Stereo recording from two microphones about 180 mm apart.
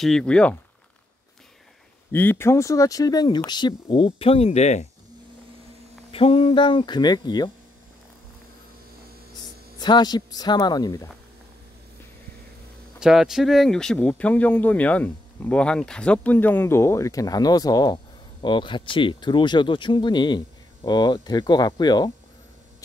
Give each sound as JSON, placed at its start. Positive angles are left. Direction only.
{"t": 0.0, "sound": "speech", "side_deg": 5}
{"t": 2.1, "sound": "speech", "side_deg": 10}
{"t": 6.1, "sound": "speech", "side_deg": 30}
{"t": 9.4, "sound": "speech", "side_deg": 25}
{"t": 13.0, "sound": "speech", "side_deg": 0}